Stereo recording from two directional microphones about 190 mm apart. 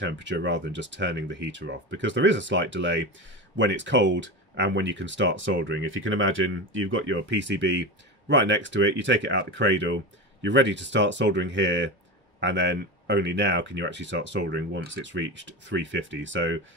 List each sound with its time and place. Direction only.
0.0 s speech: 75° right (ahead or behind)